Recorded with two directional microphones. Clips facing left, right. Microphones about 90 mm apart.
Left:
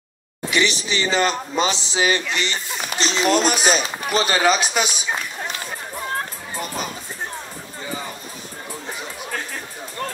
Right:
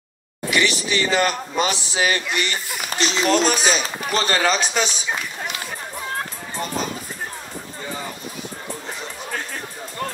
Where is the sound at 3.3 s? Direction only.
15° left (ahead or behind).